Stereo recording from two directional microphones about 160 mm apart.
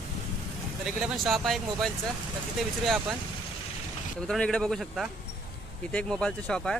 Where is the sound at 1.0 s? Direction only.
Centre (ahead or behind).